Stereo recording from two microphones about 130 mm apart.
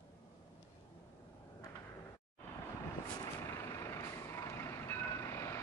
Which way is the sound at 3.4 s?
20° left (ahead or behind).